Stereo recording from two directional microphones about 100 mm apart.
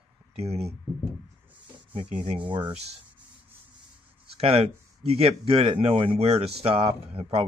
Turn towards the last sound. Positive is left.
turn(degrees=-80)